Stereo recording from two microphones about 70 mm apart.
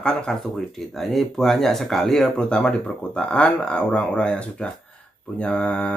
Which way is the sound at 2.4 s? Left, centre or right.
Centre.